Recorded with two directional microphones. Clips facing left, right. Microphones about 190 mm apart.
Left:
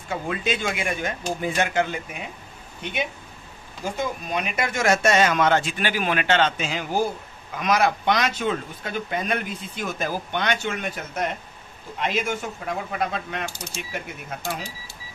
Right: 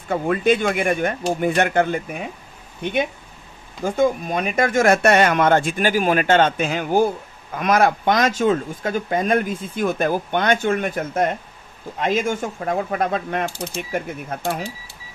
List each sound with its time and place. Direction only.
0.1 s speech: 55° right (ahead or behind)